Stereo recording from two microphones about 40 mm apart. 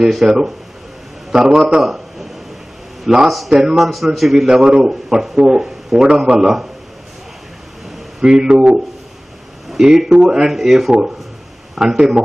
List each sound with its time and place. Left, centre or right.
0.1 s speech: centre
1.8 s a sound: centre
3.1 s speech: centre
3.9 s a man's voice: centre
4.5 s speech: centre
8.2 s speech: right
9.7 s speech: centre